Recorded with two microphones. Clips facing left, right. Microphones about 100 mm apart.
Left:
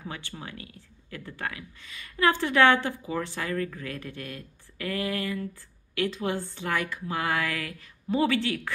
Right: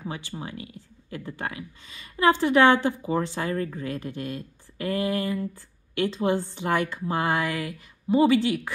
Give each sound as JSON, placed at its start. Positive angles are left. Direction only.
{"t": 0.0, "sound": "speech", "side_deg": -20}